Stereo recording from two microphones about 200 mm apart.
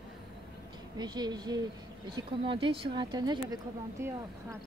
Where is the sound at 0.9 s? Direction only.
20° right (ahead or behind).